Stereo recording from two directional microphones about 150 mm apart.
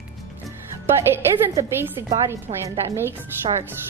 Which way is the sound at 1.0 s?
15° right (ahead or behind).